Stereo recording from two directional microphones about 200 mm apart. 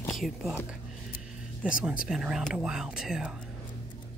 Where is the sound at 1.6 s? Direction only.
5° right (ahead or behind).